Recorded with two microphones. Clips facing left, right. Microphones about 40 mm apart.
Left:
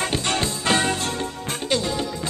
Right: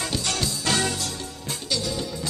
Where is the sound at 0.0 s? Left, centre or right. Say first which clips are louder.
Left 4 dB; left.